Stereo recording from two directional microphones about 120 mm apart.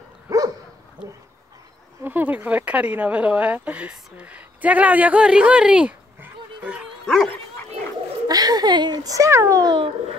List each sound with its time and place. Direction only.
0.3 s dog: 25° right (ahead or behind)
2.0 s speech: 15° right (ahead or behind)
8.3 s a child's voice: 35° right (ahead or behind)